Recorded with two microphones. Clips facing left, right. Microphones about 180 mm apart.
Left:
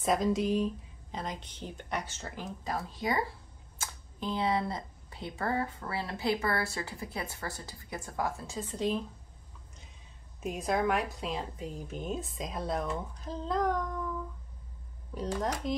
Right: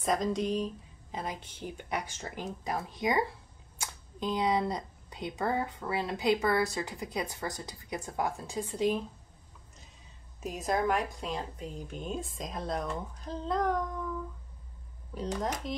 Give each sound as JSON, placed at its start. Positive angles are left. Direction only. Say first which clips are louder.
{"t": 0.0, "sound": "a woman's voice", "louder": "left 1 dB", "side_deg": 5}
{"t": 1.1, "sound": "speech", "louder": "right 1 dB", "side_deg": -10}
{"t": 10.4, "sound": "a woman's voice", "louder": "even", "side_deg": 0}
{"t": 15.7, "sound": "speech", "louder": "left 4 dB", "side_deg": 0}